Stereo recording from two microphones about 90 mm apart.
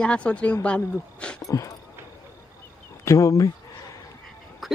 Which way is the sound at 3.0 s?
35° left (ahead or behind).